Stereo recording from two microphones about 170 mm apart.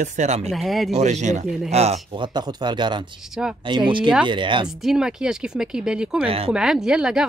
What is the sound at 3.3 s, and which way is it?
Speech, 5° right (ahead or behind).